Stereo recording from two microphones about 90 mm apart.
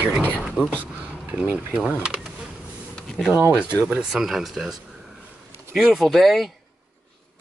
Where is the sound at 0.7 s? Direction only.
15° right (ahead or behind).